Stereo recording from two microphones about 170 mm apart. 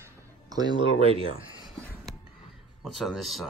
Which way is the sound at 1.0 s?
35° right (ahead or behind).